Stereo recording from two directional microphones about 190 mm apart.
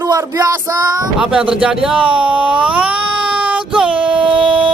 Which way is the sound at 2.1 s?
5° right (ahead or behind).